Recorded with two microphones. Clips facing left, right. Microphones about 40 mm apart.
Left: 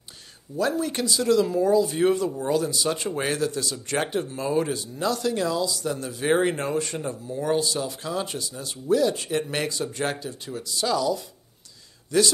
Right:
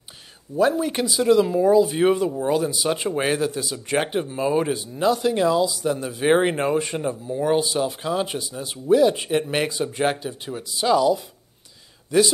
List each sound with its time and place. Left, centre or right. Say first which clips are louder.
0.6 s speech: right 5 dB; right